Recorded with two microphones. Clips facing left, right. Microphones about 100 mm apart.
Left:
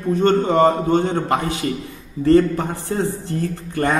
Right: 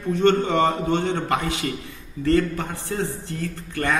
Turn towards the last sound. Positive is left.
turn(degrees=35)  # may be behind; listen again after turning